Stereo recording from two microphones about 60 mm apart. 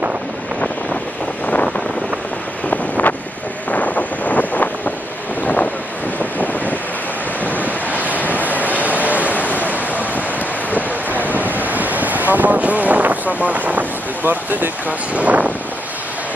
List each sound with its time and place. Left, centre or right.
1.4 s wind noise: left
2.7 s wind noise: left
7.4 s waves: left
8.4 s a sound: right
9.6 s waves: right
11.2 s waves: right